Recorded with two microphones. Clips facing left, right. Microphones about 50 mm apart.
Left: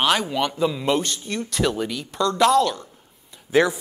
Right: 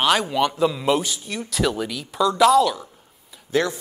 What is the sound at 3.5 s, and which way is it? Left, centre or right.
Speech, centre.